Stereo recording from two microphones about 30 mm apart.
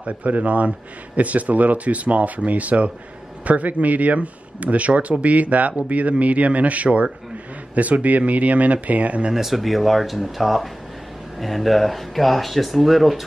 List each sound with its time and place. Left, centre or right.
0.0 s speech: right
9.3 s speech: centre